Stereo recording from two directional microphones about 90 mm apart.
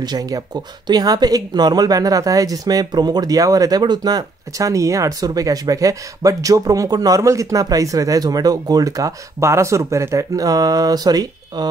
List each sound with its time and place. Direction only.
0.0 s speech: 45° right (ahead or behind)